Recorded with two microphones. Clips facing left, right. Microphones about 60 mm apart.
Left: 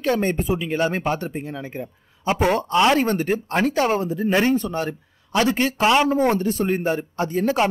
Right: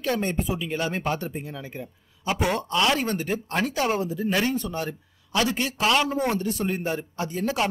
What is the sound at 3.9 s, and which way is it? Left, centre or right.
Speech, left.